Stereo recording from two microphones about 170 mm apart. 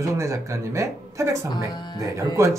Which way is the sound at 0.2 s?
20° right (ahead or behind).